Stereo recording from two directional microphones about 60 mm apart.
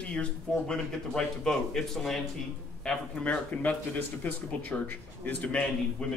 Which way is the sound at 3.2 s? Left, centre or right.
Left.